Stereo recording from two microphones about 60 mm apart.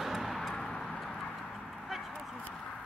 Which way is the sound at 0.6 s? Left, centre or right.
Centre.